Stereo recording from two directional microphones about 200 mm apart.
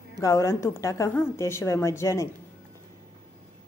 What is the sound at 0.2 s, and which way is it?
A woman's voice, 15° left (ahead or behind).